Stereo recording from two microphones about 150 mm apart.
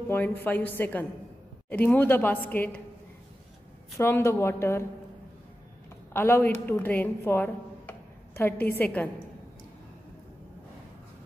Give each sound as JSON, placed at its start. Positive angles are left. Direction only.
{"t": 0.1, "sound": "a woman's voice", "side_deg": 15}
{"t": 4.0, "sound": "a woman's voice", "side_deg": 20}
{"t": 6.1, "sound": "a woman's voice", "side_deg": 15}